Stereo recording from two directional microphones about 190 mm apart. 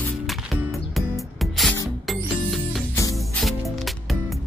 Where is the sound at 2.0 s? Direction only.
Centre (ahead or behind).